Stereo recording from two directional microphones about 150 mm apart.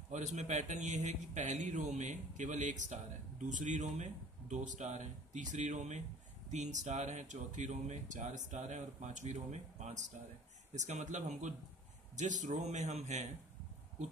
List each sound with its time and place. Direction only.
0.1 s speech: 50° right (ahead or behind)